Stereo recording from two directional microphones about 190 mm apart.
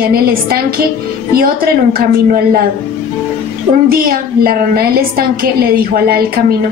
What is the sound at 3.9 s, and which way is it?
A woman's voice, 50° right (ahead or behind).